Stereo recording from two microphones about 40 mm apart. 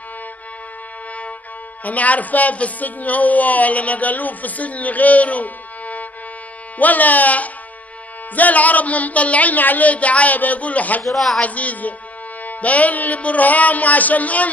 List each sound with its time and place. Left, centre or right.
1.9 s speech: left
11.1 s a man's voice: centre
11.4 s speech: left